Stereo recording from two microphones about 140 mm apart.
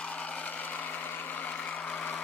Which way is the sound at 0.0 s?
10° left (ahead or behind).